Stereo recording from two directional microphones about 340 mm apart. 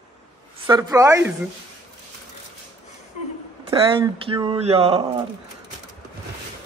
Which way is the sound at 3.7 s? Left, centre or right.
Centre.